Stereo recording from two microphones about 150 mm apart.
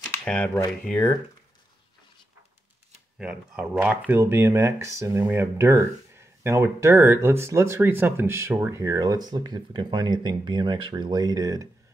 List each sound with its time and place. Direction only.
0.0 s a sound: 5° left (ahead or behind)
0.7 s speech: 5° left (ahead or behind)
3.2 s speech: 5° right (ahead or behind); by 11.6 s 25° right (ahead or behind)